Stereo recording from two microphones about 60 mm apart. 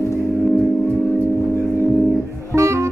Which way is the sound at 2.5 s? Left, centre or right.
Right.